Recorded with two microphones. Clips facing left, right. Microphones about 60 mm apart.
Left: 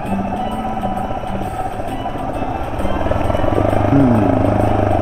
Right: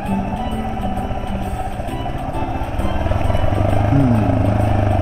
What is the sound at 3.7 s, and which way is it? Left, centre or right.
Music, left.